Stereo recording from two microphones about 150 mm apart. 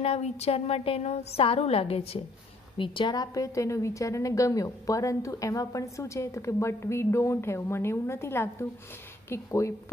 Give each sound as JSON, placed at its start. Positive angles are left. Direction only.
{"t": 0.0, "sound": "a woman's voice", "side_deg": 45}